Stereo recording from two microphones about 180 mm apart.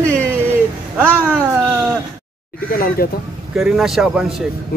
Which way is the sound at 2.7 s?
55° left (ahead or behind).